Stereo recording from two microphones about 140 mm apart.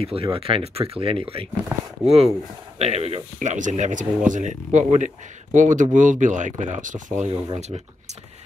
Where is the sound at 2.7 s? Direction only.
45° right (ahead or behind); by 7.0 s 65° right (ahead or behind).